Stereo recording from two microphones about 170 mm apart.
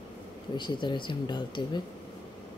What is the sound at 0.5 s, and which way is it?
Speech, 25° left (ahead or behind).